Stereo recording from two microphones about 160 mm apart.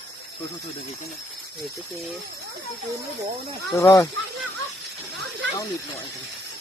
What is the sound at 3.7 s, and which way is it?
Speech, 20° left (ahead or behind).